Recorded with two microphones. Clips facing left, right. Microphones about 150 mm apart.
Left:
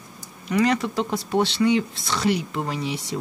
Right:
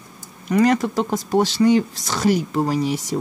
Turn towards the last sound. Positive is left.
turn(degrees=-40)  # may be behind; listen again after turning